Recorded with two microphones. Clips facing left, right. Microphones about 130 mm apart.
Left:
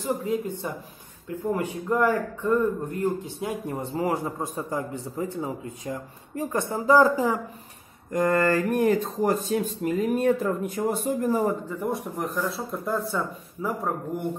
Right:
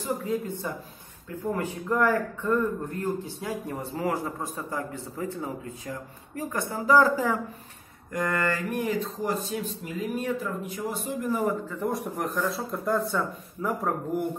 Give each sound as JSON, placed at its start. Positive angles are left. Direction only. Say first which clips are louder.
{"t": 0.0, "sound": "a man's voice", "louder": "left 2 dB", "side_deg": 15}
{"t": 8.1, "sound": "speech", "louder": "left 6 dB", "side_deg": 30}
{"t": 11.9, "sound": "speech", "louder": "left 1 dB", "side_deg": 0}